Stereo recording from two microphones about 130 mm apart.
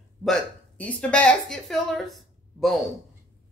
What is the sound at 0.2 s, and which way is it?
Speech, 5° left (ahead or behind).